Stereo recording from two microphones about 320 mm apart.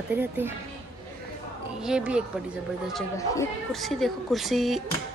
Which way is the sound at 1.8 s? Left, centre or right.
Centre.